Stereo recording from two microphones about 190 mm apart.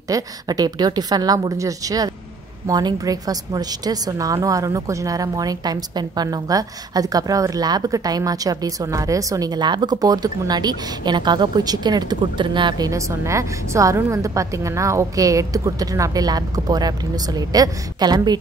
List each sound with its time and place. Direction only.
0.1 s a woman's voice: 20° right (ahead or behind)